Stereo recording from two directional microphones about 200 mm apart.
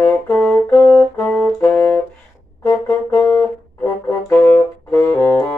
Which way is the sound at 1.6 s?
15° left (ahead or behind).